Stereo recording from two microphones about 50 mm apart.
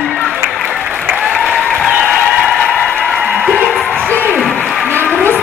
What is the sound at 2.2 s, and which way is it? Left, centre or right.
Applause, centre.